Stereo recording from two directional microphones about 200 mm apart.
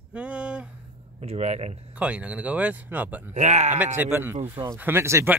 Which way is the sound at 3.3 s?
35° right (ahead or behind).